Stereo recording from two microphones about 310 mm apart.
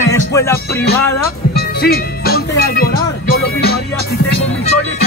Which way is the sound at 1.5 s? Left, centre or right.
Left.